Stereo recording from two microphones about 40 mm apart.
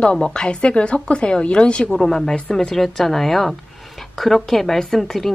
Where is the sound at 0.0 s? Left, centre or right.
Left.